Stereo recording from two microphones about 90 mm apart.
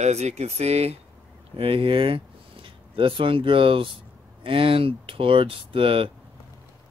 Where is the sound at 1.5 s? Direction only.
90° right.